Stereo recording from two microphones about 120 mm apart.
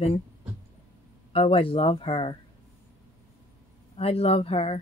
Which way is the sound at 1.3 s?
50° left (ahead or behind).